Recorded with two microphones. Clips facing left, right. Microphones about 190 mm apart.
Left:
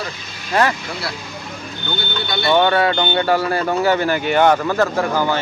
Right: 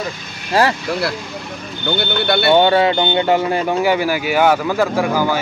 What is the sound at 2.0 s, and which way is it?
Speech, 65° right (ahead or behind).